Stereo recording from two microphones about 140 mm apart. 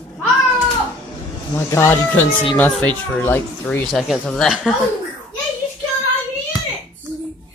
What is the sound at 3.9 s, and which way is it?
Speech, centre (ahead or behind).